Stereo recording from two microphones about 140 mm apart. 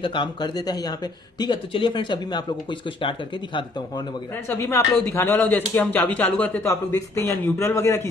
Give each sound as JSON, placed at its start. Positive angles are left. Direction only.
{"t": 0.0, "sound": "speech", "side_deg": 35}
{"t": 4.5, "sound": "a man's voice", "side_deg": 20}